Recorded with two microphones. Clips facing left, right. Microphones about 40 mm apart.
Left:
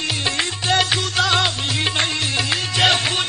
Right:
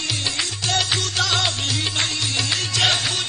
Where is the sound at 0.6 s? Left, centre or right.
Centre.